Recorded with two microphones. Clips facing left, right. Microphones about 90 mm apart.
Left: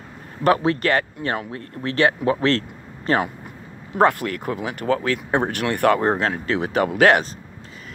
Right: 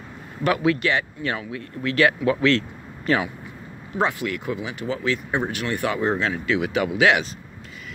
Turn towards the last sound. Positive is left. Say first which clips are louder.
# left 3 dB
turn(degrees=45)  # may be behind; listen again after turning